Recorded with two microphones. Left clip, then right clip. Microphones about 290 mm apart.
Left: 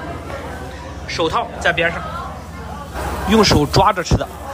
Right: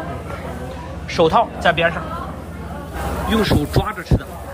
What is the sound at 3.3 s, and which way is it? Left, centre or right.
Speech, centre.